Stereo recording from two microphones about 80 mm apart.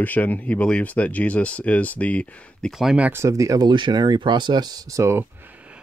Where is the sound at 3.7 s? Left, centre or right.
Right.